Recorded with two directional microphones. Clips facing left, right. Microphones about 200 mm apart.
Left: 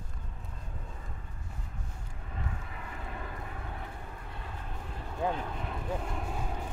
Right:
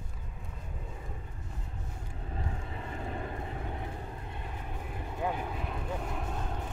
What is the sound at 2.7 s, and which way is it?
Vehicle, 30° right (ahead or behind).